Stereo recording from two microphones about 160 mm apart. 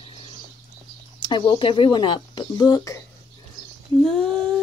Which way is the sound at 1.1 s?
30° left (ahead or behind).